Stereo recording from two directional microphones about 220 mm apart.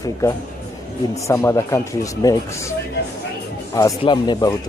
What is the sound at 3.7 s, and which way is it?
Speech, 20° left (ahead or behind).